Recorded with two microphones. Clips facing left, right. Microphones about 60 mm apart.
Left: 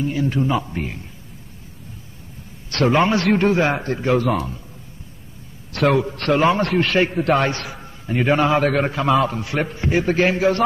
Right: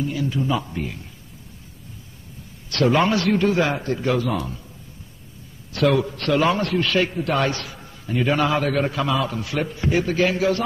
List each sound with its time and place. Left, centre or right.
0.0 s a man's voice: left
2.7 s a man's voice: left
4.2 s a man's voice: left
5.7 s a man's voice: left
8.6 s a man's voice: left